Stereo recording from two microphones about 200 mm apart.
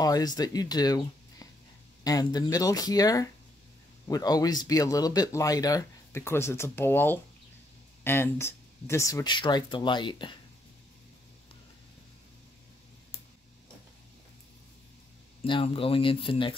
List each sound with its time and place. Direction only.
0.0 s speech: 20° left (ahead or behind)
15.4 s speech: 25° left (ahead or behind)